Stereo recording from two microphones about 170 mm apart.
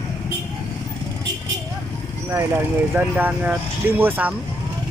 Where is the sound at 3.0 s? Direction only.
10° right (ahead or behind).